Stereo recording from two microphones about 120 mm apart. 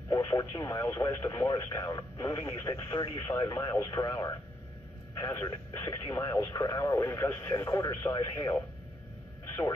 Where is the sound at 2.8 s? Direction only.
40° left (ahead or behind).